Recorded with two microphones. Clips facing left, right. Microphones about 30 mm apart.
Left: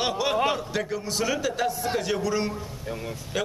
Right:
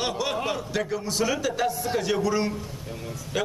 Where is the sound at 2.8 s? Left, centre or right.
Centre.